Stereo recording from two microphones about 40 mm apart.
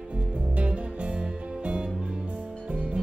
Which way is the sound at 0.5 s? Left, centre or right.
Right.